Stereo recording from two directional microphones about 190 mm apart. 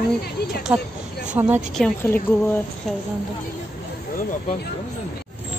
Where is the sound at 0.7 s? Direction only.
10° right (ahead or behind).